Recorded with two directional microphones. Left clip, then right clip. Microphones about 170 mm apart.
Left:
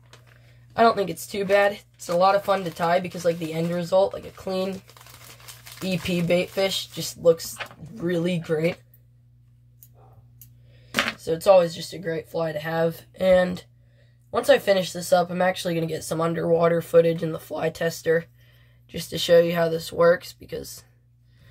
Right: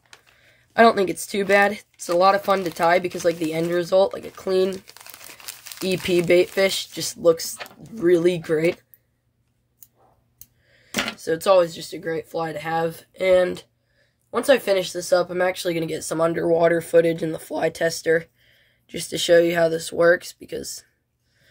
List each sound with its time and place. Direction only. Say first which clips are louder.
0.7 s speech: right 3 dB; 40° right (ahead or behind)
4.8 s crumpling: right 4 dB; 70° right (ahead or behind)
5.9 s speech: right 5 dB; 40° right (ahead or behind)
11.1 s speech: even; 40° right (ahead or behind)